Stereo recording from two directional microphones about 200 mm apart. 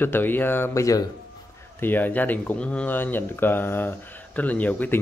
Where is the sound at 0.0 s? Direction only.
10° left (ahead or behind).